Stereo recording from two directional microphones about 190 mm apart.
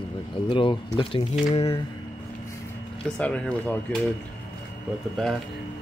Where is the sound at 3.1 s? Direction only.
5° left (ahead or behind).